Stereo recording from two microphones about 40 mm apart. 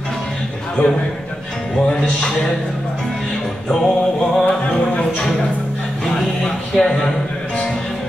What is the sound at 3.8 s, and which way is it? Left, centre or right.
Music, centre.